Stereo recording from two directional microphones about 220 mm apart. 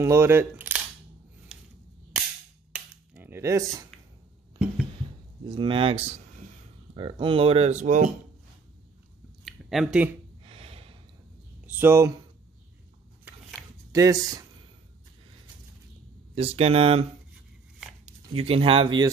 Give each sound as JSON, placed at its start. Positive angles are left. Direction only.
{"t": 0.0, "sound": "camera", "side_deg": -10}
{"t": 2.7, "sound": "cap gun", "side_deg": -10}
{"t": 5.5, "sound": "speech", "side_deg": -20}
{"t": 9.4, "sound": "a sound", "side_deg": 0}
{"t": 10.4, "sound": "gasp", "side_deg": -25}
{"t": 11.6, "sound": "speech", "side_deg": -10}
{"t": 13.2, "sound": "a sound", "side_deg": -10}
{"t": 16.3, "sound": "speech", "side_deg": -25}
{"t": 18.0, "sound": "speech", "side_deg": -25}